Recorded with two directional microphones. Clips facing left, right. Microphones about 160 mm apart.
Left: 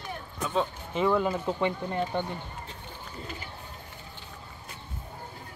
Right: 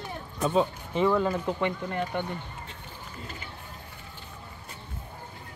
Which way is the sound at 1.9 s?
25° left (ahead or behind).